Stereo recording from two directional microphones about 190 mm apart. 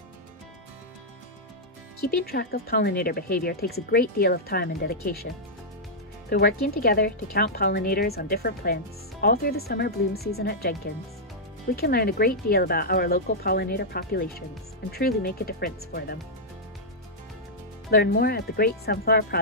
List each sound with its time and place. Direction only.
2.0 s speech: 55° left (ahead or behind)
6.3 s speech: 55° left (ahead or behind)
17.9 s speech: 55° left (ahead or behind)